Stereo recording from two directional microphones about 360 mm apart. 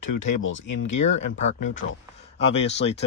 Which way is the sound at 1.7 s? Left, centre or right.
Left.